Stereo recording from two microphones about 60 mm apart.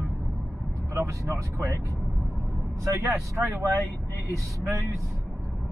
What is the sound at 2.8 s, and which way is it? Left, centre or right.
Speech, right.